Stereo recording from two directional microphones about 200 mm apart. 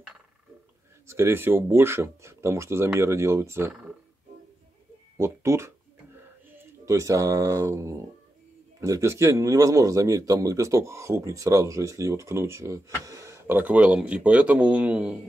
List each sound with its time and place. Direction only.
1.0 s a man's voice: 15° right (ahead or behind)
5.1 s a man's voice: 15° right (ahead or behind)